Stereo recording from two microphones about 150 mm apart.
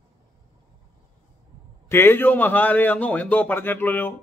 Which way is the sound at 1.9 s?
15° left (ahead or behind).